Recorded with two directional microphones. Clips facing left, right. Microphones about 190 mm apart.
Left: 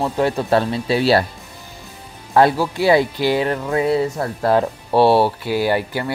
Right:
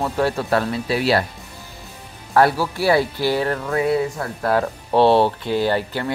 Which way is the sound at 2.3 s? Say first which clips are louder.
Left 2 dB; 20° left (ahead or behind).